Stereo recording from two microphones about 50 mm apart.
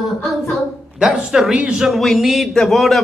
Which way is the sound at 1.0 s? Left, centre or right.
Centre.